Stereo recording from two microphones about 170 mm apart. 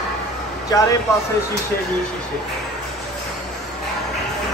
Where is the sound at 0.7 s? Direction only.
20° left (ahead or behind).